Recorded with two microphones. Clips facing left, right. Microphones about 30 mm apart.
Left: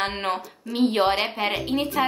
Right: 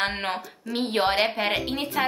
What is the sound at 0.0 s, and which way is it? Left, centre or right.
A woman's voice, centre.